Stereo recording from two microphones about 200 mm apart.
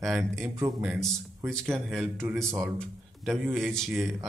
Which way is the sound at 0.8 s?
Centre (ahead or behind).